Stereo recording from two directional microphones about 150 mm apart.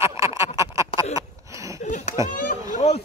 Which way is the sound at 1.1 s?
20° right (ahead or behind).